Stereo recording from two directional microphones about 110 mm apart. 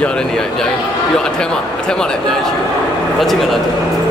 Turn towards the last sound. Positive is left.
turn(degrees=0)  # may be behind; listen again after turning